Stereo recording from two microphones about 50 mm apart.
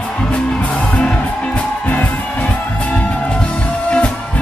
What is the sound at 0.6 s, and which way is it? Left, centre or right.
Music, left.